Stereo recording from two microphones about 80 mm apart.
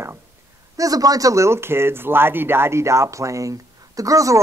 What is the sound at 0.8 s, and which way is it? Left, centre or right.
Speech, right.